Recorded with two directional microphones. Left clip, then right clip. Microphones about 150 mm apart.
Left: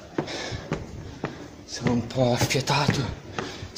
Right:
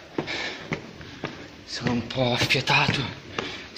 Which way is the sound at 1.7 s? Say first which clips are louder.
Even; 15° left (ahead or behind).